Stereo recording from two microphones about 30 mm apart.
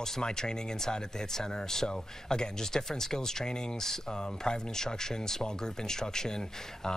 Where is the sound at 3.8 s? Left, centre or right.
Centre.